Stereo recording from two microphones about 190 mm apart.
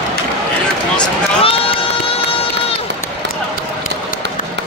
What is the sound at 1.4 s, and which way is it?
Run, 30° left (ahead or behind).